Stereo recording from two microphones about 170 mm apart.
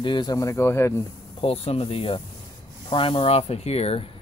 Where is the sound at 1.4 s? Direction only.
35° left (ahead or behind).